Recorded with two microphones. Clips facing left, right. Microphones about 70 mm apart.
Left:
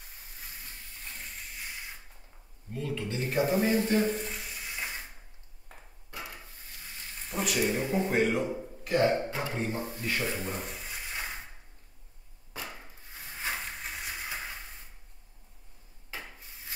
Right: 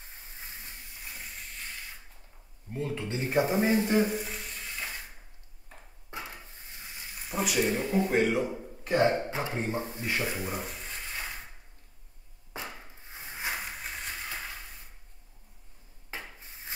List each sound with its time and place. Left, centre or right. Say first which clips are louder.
2.7 s a sound: right 1 dB; right; by 5.0 s centre
6.0 s wood: right 2 dB; right
7.2 s a man's voice: right 1 dB; centre
8.8 s speech: right 1 dB; right
10.3 s speech: right 1 dB; centre
12.6 s wood: right 1 dB; right
13.8 s train: even; centre